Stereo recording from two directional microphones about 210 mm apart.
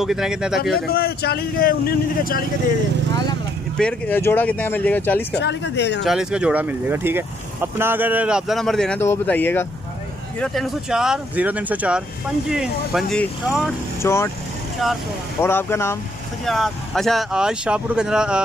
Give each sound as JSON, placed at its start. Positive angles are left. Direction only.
{"t": 0.0, "sound": "speech", "side_deg": 0}
{"t": 0.8, "sound": "speech", "side_deg": 45}
{"t": 3.7, "sound": "speech", "side_deg": 5}
{"t": 5.4, "sound": "speech", "side_deg": 55}
{"t": 6.0, "sound": "speech", "side_deg": -5}
{"t": 14.0, "sound": "speech", "side_deg": 10}
{"t": 15.4, "sound": "speech", "side_deg": 10}
{"t": 16.4, "sound": "speech", "side_deg": 0}